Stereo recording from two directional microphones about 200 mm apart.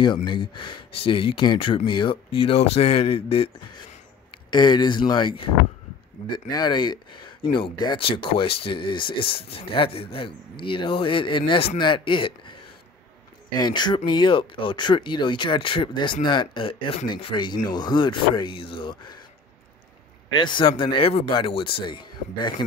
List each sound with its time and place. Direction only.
0.0 s speech: 25° left (ahead or behind)
13.6 s speech: 20° left (ahead or behind)
20.3 s speech: 25° left (ahead or behind)